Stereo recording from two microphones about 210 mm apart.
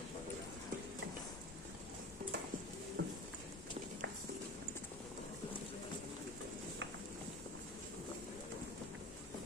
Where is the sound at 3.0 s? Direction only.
60° right (ahead or behind).